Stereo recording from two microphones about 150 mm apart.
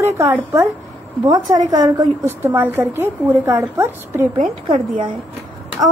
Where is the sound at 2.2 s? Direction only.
15° right (ahead or behind).